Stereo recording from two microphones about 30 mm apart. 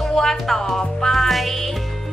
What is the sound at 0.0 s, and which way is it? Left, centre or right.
Music, centre.